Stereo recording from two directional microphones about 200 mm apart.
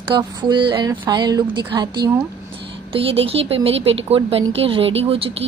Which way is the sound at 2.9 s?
25° right (ahead or behind).